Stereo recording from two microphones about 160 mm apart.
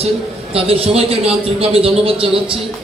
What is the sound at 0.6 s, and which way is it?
A man's voice, 35° right (ahead or behind).